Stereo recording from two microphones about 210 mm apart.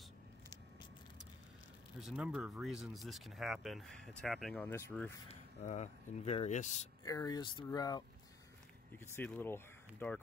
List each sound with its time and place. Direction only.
2.0 s speech: 5° right (ahead or behind)
5.3 s speech: 35° left (ahead or behind)
7.1 s speech: 15° left (ahead or behind)